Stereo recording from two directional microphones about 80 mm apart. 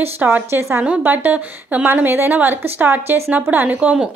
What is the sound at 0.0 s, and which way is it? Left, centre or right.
A woman's voice, right.